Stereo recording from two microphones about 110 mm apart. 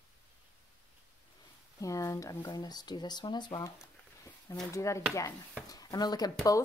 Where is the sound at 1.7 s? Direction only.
30° left (ahead or behind).